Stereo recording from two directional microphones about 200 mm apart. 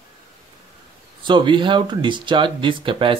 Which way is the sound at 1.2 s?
25° right (ahead or behind).